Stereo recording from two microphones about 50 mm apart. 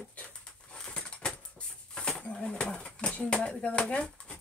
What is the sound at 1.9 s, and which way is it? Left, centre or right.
Pigeon, centre.